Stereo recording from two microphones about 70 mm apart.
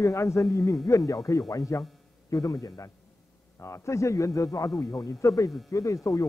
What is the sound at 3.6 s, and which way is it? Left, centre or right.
A man's voice, left.